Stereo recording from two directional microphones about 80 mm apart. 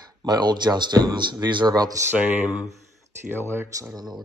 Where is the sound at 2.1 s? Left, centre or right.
Centre.